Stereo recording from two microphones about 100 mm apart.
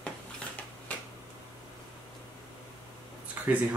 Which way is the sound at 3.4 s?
15° right (ahead or behind).